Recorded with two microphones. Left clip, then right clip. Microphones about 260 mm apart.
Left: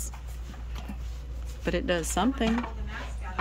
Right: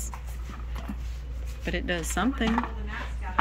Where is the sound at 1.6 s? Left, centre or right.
Centre.